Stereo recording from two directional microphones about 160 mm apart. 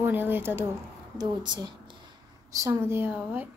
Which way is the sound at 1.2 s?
25° right (ahead or behind).